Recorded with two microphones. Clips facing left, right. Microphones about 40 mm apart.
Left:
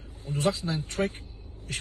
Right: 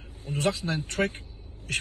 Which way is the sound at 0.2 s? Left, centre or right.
Right.